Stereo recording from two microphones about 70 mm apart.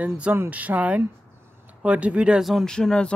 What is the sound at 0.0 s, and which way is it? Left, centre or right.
Speech, right.